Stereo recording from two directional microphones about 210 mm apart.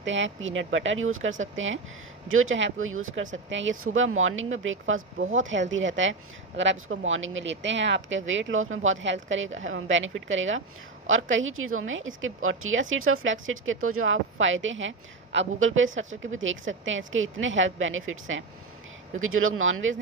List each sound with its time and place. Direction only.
0.0 s a woman's voice: 60° right (ahead or behind)
3.4 s a woman's voice: 65° right (ahead or behind)